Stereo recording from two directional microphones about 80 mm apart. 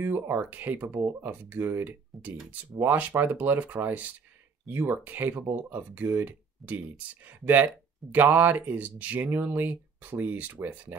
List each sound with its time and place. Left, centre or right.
0.0 s speech: right